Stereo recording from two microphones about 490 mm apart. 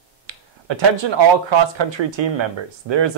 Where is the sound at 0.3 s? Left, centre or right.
Right.